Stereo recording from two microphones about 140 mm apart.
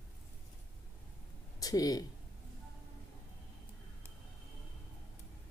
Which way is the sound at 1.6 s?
25° left (ahead or behind).